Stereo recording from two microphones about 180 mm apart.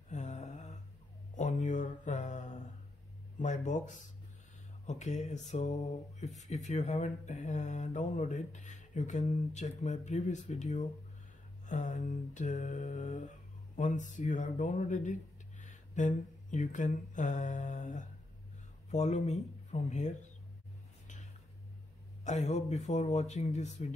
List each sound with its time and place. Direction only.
0.1 s mantra: 40° left (ahead or behind)
1.3 s a sound: 45° left (ahead or behind)
3.3 s speech: 40° left (ahead or behind)
11.6 s mantra: 45° left (ahead or behind)
15.6 s a sound: 40° left (ahead or behind)
18.9 s speech: 40° left (ahead or behind)
22.2 s speech: 40° left (ahead or behind)